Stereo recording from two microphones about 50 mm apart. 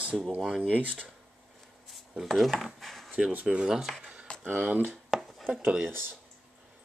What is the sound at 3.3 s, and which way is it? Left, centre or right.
Speech, right.